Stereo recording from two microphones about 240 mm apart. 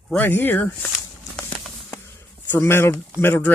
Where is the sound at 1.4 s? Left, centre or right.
Centre.